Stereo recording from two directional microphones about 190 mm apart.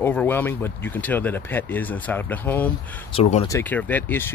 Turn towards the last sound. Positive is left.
turn(degrees=10)  # may be behind; listen again after turning